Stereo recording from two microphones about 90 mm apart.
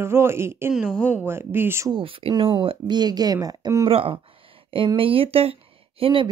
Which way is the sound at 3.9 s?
90° right.